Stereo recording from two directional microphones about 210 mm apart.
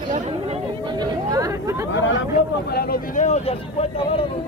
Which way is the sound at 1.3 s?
15° right (ahead or behind).